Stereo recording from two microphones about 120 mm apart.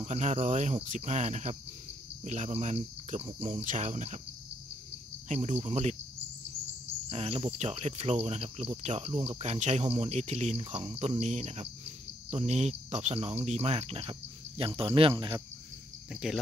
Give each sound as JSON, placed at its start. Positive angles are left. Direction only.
{"t": 0.0, "sound": "speech", "side_deg": -80}
{"t": 0.8, "sound": "cricket", "side_deg": -80}
{"t": 3.2, "sound": "speech", "side_deg": -50}
{"t": 3.6, "sound": "cricket", "side_deg": -85}
{"t": 5.3, "sound": "speech", "side_deg": -65}
{"t": 7.1, "sound": "speech", "side_deg": -60}
{"t": 11.0, "sound": "cricket", "side_deg": -75}
{"t": 12.3, "sound": "speech", "side_deg": -65}
{"t": 16.1, "sound": "speech", "side_deg": -5}